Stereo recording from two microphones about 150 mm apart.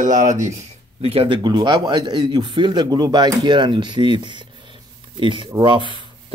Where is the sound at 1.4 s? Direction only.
30° right (ahead or behind).